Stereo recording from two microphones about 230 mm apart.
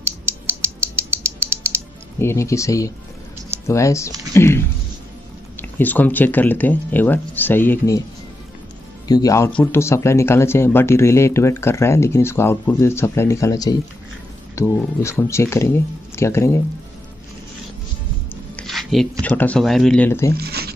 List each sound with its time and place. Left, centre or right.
0.2 s creak: centre
2.1 s speech: centre
9.0 s speech: centre
18.6 s a sound: centre
19.2 s speech: centre
20.3 s zipper: right